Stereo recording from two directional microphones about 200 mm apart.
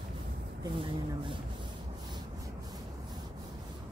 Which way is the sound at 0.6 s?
25° right (ahead or behind).